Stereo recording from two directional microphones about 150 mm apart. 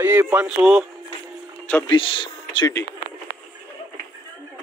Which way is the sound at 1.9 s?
35° left (ahead or behind).